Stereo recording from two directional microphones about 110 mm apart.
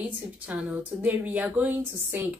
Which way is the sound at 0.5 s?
15° right (ahead or behind).